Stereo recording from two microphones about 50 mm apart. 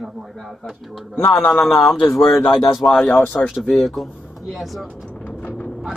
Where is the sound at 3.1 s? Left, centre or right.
Left.